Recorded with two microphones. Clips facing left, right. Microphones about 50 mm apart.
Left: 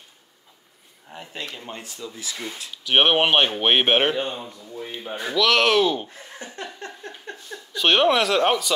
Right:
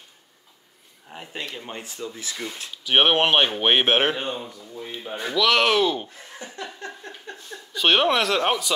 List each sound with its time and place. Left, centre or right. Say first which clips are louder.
1.1 s speech: right 1 dB; centre
1.7 s speech: right 1 dB; right
2.3 s speech: even; centre
2.8 s speech: even; centre
4.7 s speech: left 1 dB; centre
6.4 s a sound: even; left
7.7 s speech: left 1 dB; centre